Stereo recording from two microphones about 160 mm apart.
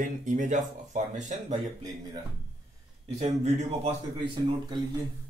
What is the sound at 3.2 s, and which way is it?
A man's voice, 40° right (ahead or behind).